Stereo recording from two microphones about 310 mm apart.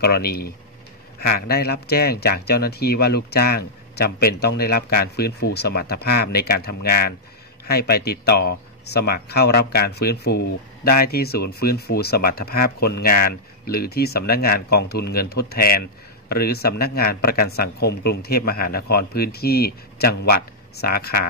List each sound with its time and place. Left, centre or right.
0.0 s speech: left